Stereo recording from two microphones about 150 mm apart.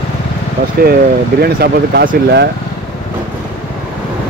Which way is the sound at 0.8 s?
90° right.